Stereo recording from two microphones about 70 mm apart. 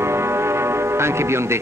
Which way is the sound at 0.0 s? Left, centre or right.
Right.